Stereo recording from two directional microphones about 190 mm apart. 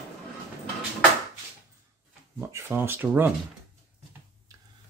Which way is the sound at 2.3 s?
10° right (ahead or behind).